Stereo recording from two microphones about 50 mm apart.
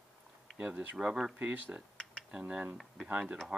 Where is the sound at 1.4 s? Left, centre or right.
Right.